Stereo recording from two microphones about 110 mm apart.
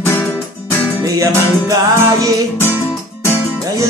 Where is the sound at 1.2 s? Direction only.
30° right (ahead or behind).